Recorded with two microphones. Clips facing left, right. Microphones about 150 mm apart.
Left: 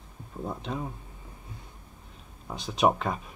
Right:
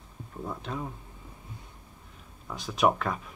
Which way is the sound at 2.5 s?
25° left (ahead or behind).